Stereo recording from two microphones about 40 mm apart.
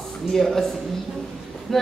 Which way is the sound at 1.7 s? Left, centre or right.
Centre.